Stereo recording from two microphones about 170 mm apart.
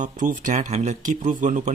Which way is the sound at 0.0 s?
50° right (ahead or behind).